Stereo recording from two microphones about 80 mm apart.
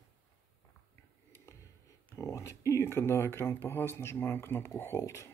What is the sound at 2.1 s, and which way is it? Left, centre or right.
Speech, left.